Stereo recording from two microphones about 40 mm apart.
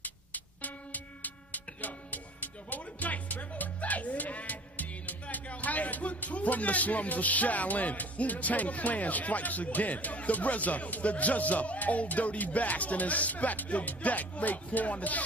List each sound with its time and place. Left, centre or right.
0.0 s speech: left